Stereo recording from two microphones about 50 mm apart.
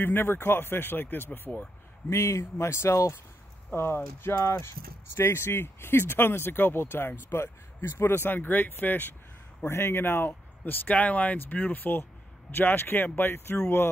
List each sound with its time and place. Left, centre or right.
0.0 s speech: left
2.0 s speech: left
2.6 s speech: left
3.7 s speech: left
4.4 s speech: left
5.1 s speech: left
9.7 s speech: left